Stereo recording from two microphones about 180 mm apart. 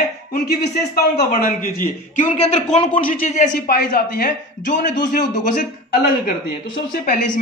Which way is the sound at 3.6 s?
55° left (ahead or behind).